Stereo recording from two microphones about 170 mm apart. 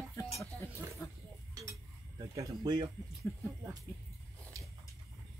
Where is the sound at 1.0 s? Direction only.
20° left (ahead or behind).